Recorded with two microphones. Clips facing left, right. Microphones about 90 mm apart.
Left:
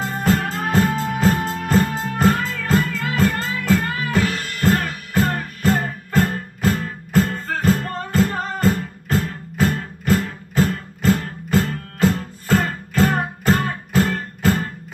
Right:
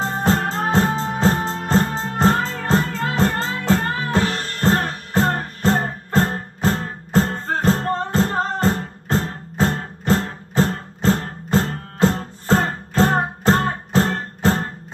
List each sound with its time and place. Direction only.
0.2 s music: 30° right (ahead or behind)